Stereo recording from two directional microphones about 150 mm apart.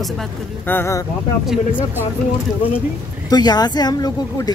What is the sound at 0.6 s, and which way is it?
Speech, 15° left (ahead or behind).